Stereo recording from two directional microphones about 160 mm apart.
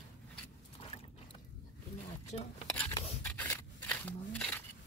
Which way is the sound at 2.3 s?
40° left (ahead or behind).